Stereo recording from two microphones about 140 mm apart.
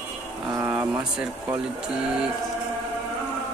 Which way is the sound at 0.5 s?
20° right (ahead or behind).